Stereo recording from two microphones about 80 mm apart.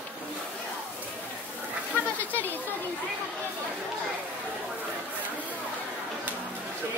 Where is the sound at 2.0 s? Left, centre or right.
Left.